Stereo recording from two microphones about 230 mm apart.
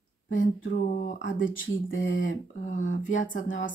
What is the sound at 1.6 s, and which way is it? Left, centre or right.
Speech, left.